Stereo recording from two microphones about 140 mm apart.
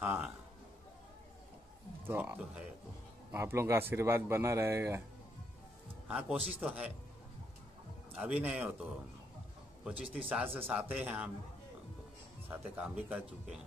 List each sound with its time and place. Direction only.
0.0 s a sound: 15° right (ahead or behind)
2.0 s speech: 15° right (ahead or behind)
6.0 s a man's voice: 5° right (ahead or behind)
8.2 s speech: 10° right (ahead or behind)
9.8 s speech: 10° right (ahead or behind)
12.4 s speech: 10° right (ahead or behind)